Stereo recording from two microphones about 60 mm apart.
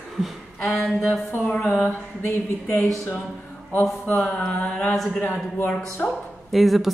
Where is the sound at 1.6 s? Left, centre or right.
Left.